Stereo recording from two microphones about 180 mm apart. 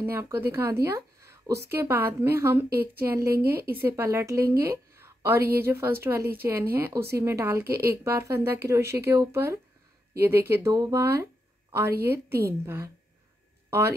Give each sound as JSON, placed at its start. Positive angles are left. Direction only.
{"t": 0.0, "sound": "a woman's voice", "side_deg": -15}